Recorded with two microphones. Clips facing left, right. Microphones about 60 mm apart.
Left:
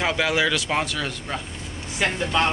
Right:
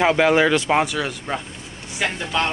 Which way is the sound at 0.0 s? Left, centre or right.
Right.